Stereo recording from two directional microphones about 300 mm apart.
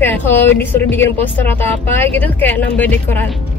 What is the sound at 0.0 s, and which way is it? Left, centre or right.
Speech, centre.